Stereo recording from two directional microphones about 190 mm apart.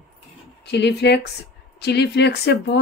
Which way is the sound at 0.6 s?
60° left (ahead or behind).